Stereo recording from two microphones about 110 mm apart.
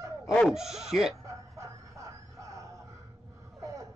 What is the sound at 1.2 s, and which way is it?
Music, 30° right (ahead or behind).